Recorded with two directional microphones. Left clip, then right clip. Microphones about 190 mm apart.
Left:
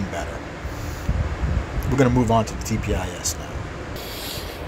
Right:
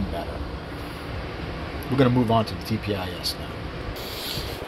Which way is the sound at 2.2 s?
10° left (ahead or behind).